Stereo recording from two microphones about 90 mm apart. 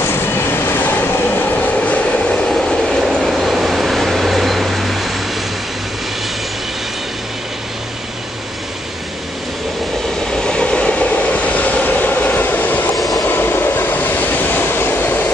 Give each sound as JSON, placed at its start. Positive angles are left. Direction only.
{"t": 0.0, "sound": "train", "side_deg": 25}
{"t": 10.3, "sound": "train", "side_deg": 10}
{"t": 12.9, "sound": "train", "side_deg": 0}
{"t": 13.2, "sound": "vehicle", "side_deg": 25}